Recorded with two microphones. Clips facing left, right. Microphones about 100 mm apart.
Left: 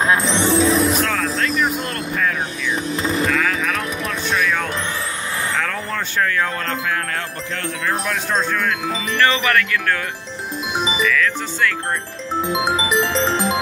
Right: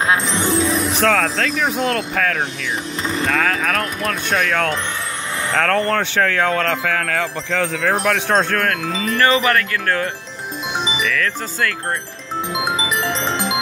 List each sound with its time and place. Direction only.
0.3 s music: 25° left (ahead or behind)
0.9 s wind chime: 90° right
3.3 s speech: 50° right (ahead or behind); by 4.7 s 65° right (ahead or behind)
5.5 s wind chime: 80° right
7.8 s speech: 85° right; by 8.7 s 60° right (ahead or behind)
9.1 s music: 35° right (ahead or behind)
12.4 s music: 25° left (ahead or behind)